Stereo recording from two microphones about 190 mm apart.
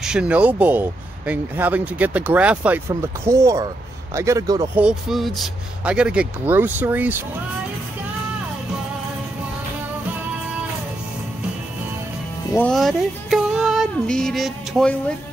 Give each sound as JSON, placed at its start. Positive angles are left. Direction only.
{"t": 0.0, "sound": "speech", "side_deg": -5}
{"t": 4.7, "sound": "speech", "side_deg": -5}
{"t": 12.5, "sound": "female singing", "side_deg": 5}